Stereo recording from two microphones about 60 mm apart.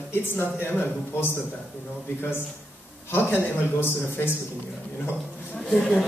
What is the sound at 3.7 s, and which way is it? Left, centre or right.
Speech, left.